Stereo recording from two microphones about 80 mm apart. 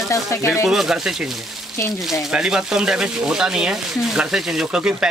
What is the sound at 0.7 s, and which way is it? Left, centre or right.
Speech, centre.